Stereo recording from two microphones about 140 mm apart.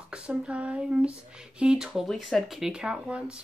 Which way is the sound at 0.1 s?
5° right (ahead or behind).